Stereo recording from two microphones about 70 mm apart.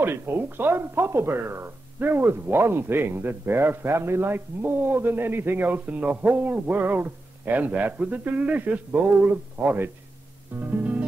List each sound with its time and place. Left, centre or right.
0.0 s speech: right
10.6 s music: right